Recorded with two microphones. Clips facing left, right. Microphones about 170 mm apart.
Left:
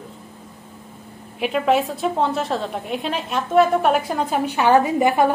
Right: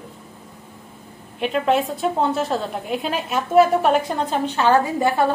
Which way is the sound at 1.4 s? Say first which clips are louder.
Left 1 dB; centre (ahead or behind).